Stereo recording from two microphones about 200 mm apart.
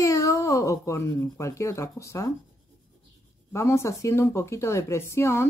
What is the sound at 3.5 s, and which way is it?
A child's voice, 15° left (ahead or behind).